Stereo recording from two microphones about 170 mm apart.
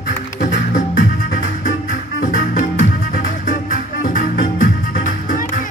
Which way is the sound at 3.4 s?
55° left (ahead or behind).